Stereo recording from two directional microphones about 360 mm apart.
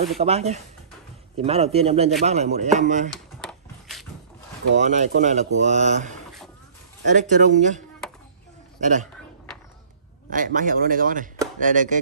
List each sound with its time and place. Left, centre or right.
0.2 s a man's voice: centre
3.1 s a sound: centre
4.7 s speech: centre
8.0 s a sound: centre
8.8 s speech: centre
10.3 s speech: right